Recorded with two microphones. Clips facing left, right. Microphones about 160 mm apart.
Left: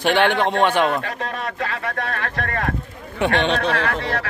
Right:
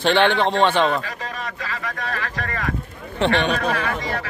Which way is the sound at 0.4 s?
25° right (ahead or behind).